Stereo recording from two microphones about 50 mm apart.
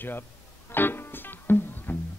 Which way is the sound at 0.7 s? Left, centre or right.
Left.